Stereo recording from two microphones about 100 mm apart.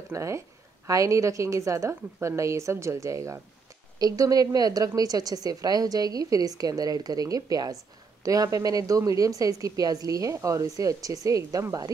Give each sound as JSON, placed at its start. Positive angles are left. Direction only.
{"t": 0.1, "sound": "a woman's voice", "side_deg": -30}